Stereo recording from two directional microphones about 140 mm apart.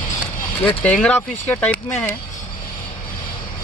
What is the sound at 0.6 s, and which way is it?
Speech, 10° left (ahead or behind).